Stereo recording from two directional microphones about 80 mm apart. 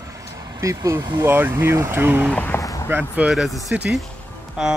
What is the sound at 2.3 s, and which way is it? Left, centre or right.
Speech, left.